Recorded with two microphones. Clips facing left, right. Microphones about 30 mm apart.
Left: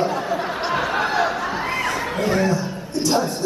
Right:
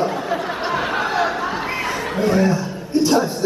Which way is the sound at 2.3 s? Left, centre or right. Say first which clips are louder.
Right 3 dB; centre.